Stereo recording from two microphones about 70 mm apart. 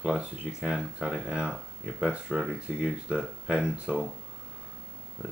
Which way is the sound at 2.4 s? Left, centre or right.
Centre.